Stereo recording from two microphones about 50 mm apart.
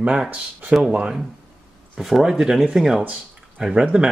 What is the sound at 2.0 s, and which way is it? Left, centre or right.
Speech, centre.